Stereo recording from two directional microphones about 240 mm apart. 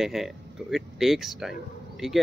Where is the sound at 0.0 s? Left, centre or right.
Centre.